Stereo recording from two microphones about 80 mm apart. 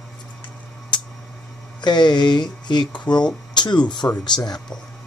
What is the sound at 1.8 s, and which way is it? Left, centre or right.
Speech, left.